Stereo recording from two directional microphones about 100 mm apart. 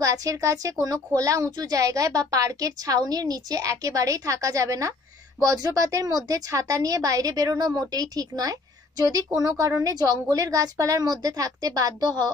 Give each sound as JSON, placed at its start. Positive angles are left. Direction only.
{"t": 0.0, "sound": "a woman's voice", "side_deg": -35}